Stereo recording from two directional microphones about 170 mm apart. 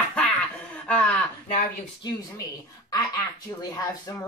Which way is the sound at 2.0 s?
20° left (ahead or behind).